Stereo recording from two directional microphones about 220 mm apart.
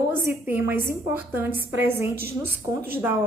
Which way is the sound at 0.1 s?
10° right (ahead or behind).